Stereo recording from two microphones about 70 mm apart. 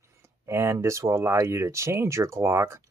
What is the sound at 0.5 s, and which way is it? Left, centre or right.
Speech, right.